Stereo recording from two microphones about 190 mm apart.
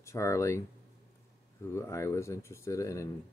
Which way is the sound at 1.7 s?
15° left (ahead or behind).